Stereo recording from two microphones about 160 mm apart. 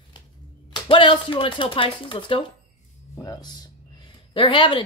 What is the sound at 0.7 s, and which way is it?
Speech, 30° left (ahead or behind).